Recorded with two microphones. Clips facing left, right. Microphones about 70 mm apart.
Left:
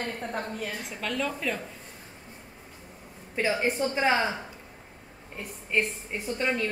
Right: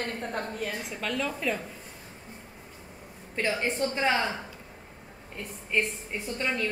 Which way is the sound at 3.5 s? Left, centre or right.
Centre.